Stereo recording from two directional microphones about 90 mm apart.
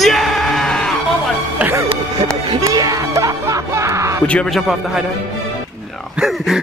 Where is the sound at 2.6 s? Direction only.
40° right (ahead or behind).